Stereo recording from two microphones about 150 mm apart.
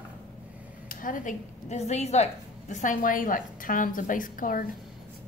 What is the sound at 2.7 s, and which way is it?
A woman's voice, 60° left (ahead or behind).